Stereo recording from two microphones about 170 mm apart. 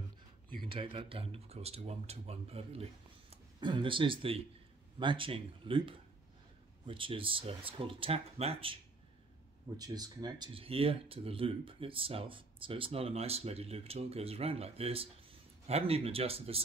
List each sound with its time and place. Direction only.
0.6 s speech: 30° right (ahead or behind)
9.8 s speech: 25° right (ahead or behind)